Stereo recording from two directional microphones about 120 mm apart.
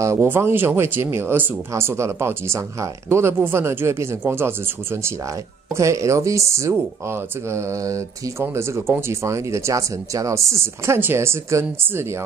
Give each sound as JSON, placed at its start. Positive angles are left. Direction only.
{"t": 0.0, "sound": "speech", "side_deg": -20}